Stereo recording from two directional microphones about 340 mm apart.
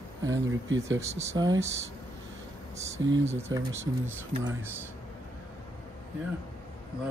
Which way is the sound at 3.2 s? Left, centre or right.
Centre.